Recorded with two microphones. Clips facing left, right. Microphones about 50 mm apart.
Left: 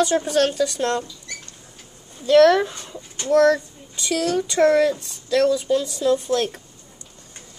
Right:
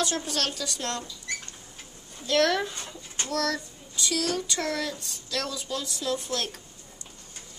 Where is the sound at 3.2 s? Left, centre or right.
Left.